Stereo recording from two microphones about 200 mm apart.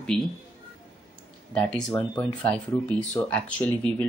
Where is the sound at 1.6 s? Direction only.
5° left (ahead or behind).